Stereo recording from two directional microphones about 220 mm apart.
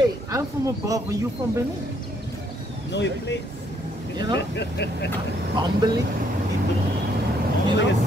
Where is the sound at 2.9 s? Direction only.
50° left (ahead or behind).